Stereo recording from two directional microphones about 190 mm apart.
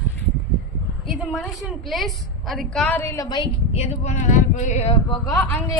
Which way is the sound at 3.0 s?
15° left (ahead or behind).